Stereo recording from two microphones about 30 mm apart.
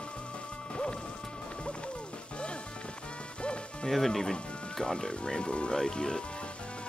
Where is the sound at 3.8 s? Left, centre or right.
Centre.